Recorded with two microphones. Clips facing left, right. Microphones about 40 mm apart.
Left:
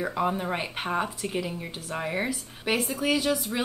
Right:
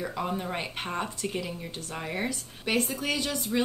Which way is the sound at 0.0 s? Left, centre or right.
Centre.